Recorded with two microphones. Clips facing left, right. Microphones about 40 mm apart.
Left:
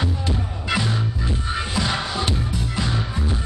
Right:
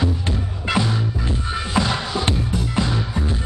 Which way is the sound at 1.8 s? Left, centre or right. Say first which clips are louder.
Right 5 dB; right.